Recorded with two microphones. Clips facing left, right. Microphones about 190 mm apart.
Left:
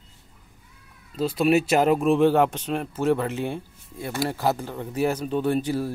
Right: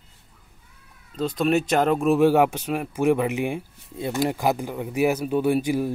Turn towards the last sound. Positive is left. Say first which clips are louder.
# right 2 dB
turn(degrees=-15)  # may be behind; listen again after turning